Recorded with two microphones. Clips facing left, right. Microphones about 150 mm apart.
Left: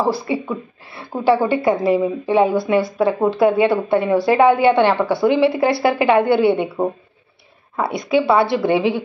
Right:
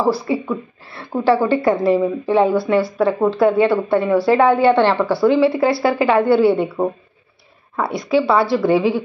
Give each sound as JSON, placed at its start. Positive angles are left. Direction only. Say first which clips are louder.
{"t": 0.0, "sound": "a woman's voice", "louder": "right 2 dB", "side_deg": 20}
{"t": 7.7, "sound": "a woman's voice", "louder": "even", "side_deg": 20}